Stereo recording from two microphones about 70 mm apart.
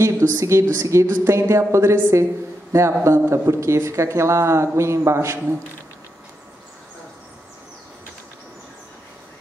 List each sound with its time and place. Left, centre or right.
0.0 s speech: right